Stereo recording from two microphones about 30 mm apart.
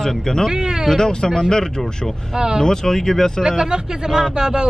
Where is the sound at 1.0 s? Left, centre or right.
Left.